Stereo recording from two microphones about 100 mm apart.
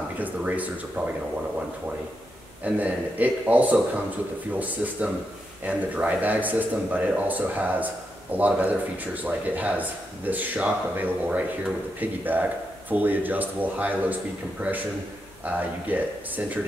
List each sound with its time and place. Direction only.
0.2 s speech: 15° right (ahead or behind)
2.6 s speech: 15° right (ahead or behind)